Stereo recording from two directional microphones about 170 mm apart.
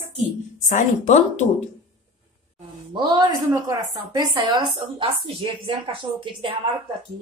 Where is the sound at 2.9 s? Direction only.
25° right (ahead or behind).